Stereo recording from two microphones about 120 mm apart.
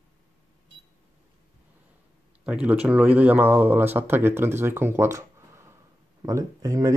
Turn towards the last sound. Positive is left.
turn(degrees=-25)  # may be behind; listen again after turning